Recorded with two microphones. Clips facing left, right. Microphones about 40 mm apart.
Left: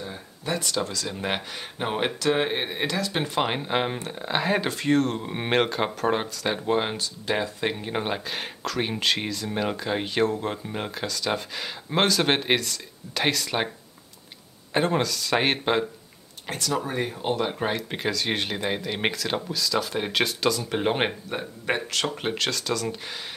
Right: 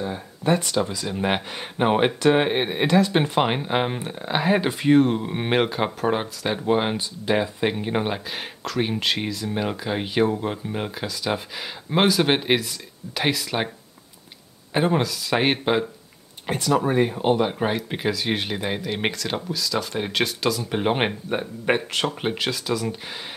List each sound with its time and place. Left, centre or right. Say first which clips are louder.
0.0 s a sound: right 8 dB; centre
0.7 s speech: right 4 dB; centre
14.7 s speech: right 2 dB; centre
16.4 s speech: right 6 dB; centre
21.3 s speech: right 5 dB; centre
22.0 s speech: right 2 dB; centre